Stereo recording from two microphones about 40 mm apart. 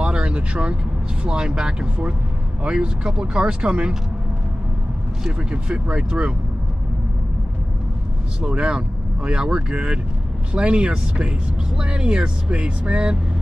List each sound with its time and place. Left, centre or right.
0.0 s vehicle: right
1.2 s speech: right
5.7 s speech: right
8.5 s speech: right